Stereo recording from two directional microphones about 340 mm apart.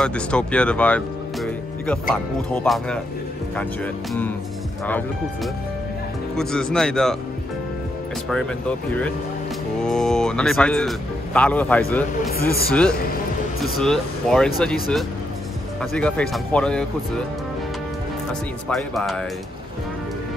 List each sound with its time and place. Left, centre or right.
0.0 s speech: centre
8.3 s speech: centre
12.4 s speech: left
13.6 s speech: centre
18.7 s speech: centre